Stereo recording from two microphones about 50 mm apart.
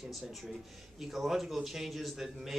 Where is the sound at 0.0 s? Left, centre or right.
Centre.